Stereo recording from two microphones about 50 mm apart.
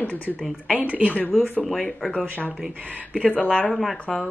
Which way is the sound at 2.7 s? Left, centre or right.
Right.